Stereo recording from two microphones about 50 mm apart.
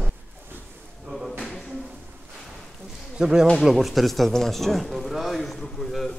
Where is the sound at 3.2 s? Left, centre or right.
Centre.